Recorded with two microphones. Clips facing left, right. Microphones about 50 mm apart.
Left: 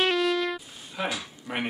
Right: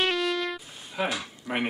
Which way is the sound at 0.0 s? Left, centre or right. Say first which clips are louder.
Left 2 dB; centre.